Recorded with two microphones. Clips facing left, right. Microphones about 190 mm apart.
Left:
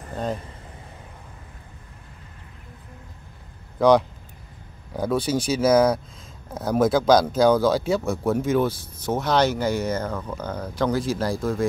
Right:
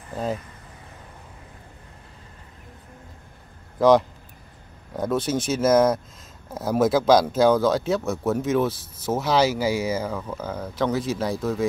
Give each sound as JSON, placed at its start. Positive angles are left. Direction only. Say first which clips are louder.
{"t": 3.8, "sound": "speech", "louder": "even", "side_deg": 0}